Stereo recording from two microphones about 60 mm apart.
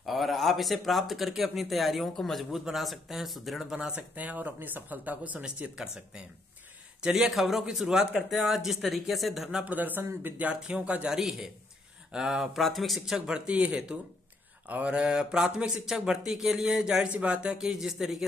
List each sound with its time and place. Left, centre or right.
0.0 s speech: centre
3.7 s speech: centre
4.1 s speech: right
5.8 s speech: centre
7.2 s speech: centre
9.7 s speech: right
10.3 s speech: right
11.1 s speech: centre
13.5 s speech: right
17.6 s speech: centre